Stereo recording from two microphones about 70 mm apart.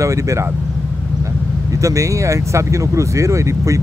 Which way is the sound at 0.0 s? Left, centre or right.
Right.